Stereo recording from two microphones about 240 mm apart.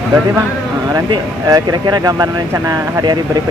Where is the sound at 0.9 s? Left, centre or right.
Centre.